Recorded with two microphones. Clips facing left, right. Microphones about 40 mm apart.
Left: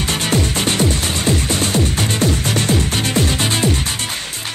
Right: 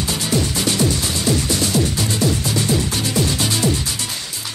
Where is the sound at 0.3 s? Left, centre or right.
Left.